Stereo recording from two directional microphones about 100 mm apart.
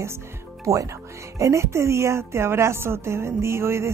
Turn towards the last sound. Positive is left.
turn(degrees=-25)  # may be behind; listen again after turning